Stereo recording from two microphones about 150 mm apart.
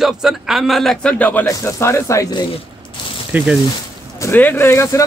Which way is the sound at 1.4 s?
20° left (ahead or behind).